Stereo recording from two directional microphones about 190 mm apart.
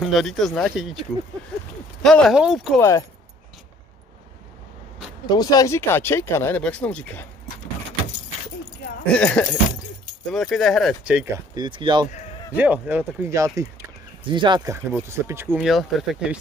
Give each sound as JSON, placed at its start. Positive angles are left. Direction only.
{"t": 0.0, "sound": "speech", "side_deg": 0}
{"t": 2.0, "sound": "speech", "side_deg": 0}
{"t": 2.8, "sound": "speech", "side_deg": 15}
{"t": 5.2, "sound": "speech", "side_deg": 20}
{"t": 9.1, "sound": "speech", "side_deg": 5}
{"t": 11.5, "sound": "speech", "side_deg": -25}
{"t": 12.5, "sound": "speech", "side_deg": -10}
{"t": 15.5, "sound": "speech", "side_deg": 0}